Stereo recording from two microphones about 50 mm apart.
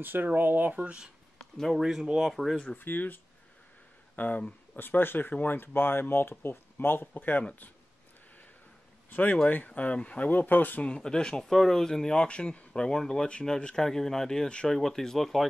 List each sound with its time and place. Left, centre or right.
0.0 s speech: right
1.7 s speech: centre
2.8 s speech: left
4.2 s speech: left
4.7 s speech: left
9.1 s speech: left
11.0 s speech: centre